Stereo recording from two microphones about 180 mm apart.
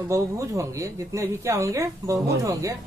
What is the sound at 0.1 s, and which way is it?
Speech, 15° right (ahead or behind).